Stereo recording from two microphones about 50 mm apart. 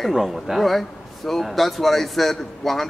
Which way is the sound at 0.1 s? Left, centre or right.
Centre.